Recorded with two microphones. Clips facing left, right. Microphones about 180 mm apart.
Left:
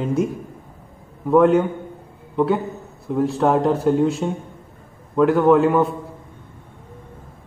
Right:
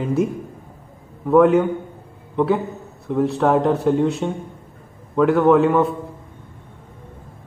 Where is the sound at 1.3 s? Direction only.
Centre (ahead or behind).